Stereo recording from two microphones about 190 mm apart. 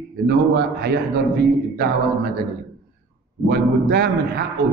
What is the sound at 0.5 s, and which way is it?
Speech, 60° right (ahead or behind).